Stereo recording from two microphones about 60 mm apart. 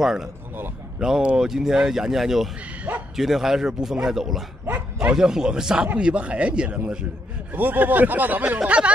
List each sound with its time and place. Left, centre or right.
0.0 s speech: centre
7.5 s speech: right